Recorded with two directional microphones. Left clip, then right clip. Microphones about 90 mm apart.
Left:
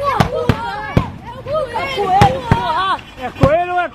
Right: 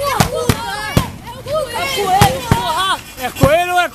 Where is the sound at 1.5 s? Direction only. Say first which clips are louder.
Right 1 dB; 5° right (ahead or behind).